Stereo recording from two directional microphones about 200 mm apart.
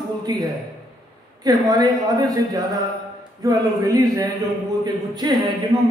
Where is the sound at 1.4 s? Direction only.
20° right (ahead or behind).